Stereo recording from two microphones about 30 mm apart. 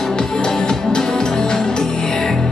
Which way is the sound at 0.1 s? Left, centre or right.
Left.